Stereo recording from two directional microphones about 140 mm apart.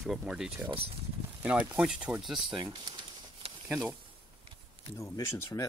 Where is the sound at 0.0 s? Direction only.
Centre (ahead or behind).